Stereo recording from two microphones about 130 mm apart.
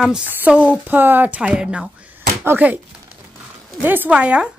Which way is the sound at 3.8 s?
15° right (ahead or behind).